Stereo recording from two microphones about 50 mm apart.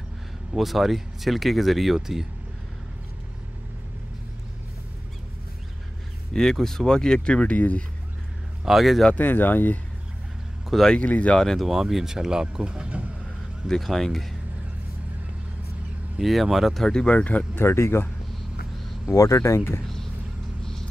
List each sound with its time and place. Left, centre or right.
0.6 s speech: centre
6.3 s speech: centre; by 7.8 s left
8.6 s speech: centre
9.1 s speech: left
11.0 s speech: left
11.5 s speech: centre; by 13.1 s right
13.7 s speech: centre
16.2 s speech: centre
16.8 s speech: centre
17.1 s speech: left
17.6 s speech: left
19.0 s speech: left